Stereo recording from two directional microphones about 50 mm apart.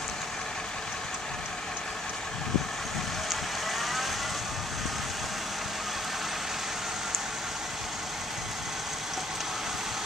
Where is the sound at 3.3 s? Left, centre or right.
Centre.